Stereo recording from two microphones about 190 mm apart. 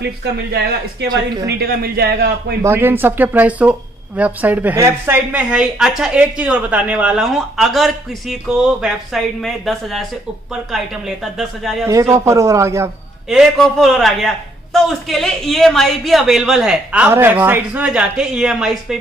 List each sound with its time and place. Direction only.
0.0 s speech: 60° right (ahead or behind)
1.0 s speech: 20° right (ahead or behind)
1.6 s speech: 55° right (ahead or behind)
2.6 s speech: 10° right (ahead or behind)
11.3 s speech: centre (ahead or behind)
11.8 s speech: 15° right (ahead or behind)
13.3 s speech: centre (ahead or behind)